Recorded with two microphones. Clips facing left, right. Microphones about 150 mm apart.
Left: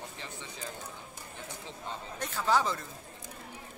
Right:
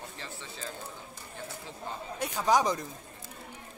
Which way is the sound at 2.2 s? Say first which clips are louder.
Right 3 dB; 15° right (ahead or behind).